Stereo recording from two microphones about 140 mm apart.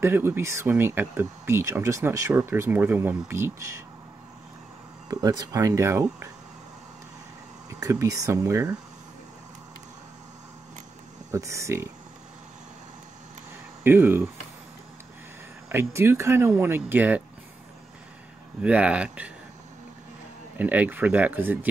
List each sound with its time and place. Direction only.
0.0 s speech: 15° right (ahead or behind)
5.0 s speech: 25° right (ahead or behind)
7.8 s speech: 25° right (ahead or behind)
11.3 s speech: 20° right (ahead or behind)
13.8 s speech: 15° right (ahead or behind)
15.7 s speech: 20° right (ahead or behind)
18.6 s speech: 10° right (ahead or behind)
20.5 s speech: 10° right (ahead or behind)